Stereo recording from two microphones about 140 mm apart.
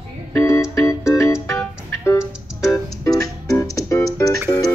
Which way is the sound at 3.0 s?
25° left (ahead or behind).